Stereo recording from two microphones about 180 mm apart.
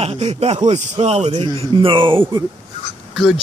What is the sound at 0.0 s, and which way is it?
Speech, 35° right (ahead or behind).